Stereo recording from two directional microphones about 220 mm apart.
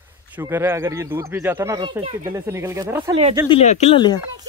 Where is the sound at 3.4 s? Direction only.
30° left (ahead or behind).